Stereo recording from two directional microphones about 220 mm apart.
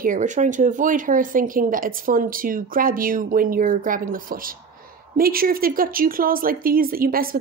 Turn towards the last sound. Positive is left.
turn(degrees=-40)  # may be behind; listen again after turning